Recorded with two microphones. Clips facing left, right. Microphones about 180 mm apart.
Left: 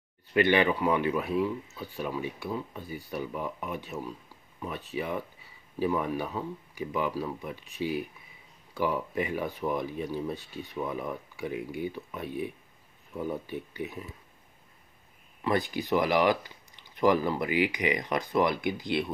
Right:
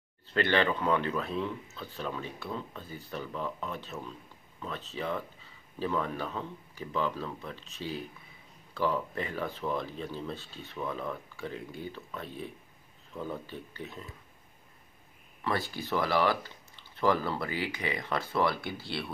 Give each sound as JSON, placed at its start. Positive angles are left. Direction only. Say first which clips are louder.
{"t": 0.3, "sound": "speech", "louder": "left 4 dB", "side_deg": 15}
{"t": 15.4, "sound": "speech", "louder": "left 5 dB", "side_deg": 15}